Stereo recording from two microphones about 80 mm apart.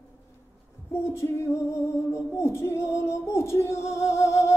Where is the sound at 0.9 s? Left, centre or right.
Left.